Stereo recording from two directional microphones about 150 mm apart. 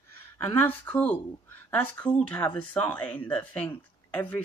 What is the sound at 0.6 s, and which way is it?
Speech, 10° left (ahead or behind).